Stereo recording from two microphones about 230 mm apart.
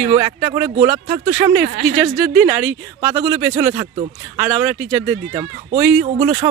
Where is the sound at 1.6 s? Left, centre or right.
Right.